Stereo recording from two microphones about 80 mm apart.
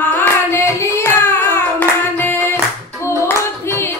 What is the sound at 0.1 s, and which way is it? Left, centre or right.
Hands, left.